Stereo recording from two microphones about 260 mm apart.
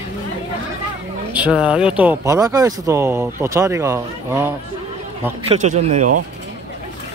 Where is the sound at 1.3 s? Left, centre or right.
Centre.